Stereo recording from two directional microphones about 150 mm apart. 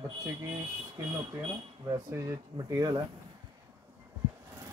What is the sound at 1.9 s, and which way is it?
Speech, 20° right (ahead or behind).